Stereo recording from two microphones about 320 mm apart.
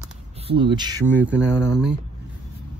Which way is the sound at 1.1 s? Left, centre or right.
Centre.